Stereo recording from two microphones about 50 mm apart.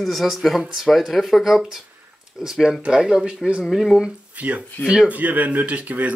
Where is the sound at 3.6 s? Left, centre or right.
Centre.